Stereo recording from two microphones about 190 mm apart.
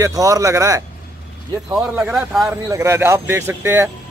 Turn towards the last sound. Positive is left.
turn(degrees=-10)  # may be behind; listen again after turning